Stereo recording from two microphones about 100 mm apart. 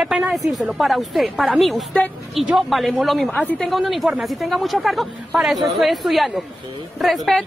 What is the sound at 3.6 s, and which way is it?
Speech, centre (ahead or behind).